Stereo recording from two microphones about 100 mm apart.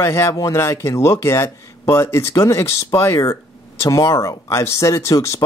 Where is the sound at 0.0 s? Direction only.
30° left (ahead or behind).